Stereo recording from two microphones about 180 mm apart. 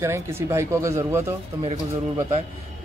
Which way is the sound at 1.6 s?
30° right (ahead or behind).